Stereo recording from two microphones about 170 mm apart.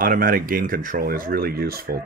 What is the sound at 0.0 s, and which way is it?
A man's voice, 55° right (ahead or behind).